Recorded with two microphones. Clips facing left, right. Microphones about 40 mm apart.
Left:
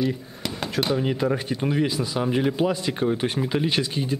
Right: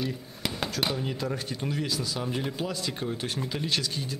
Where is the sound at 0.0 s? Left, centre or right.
Centre.